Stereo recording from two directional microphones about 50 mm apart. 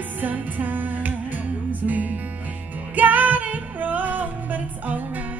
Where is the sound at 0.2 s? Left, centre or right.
Right.